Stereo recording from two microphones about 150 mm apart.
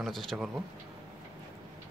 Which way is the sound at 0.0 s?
Centre (ahead or behind).